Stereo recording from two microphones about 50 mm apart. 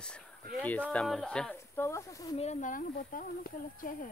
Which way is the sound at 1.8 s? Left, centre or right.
Left.